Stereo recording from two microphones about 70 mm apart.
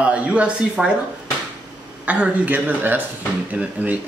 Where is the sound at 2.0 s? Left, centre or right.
Centre.